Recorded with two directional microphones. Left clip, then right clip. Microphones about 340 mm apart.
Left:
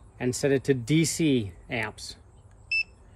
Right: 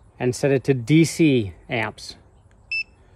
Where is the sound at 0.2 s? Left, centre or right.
Right.